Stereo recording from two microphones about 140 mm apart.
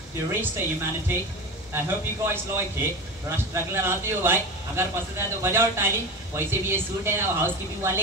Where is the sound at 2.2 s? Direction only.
15° right (ahead or behind).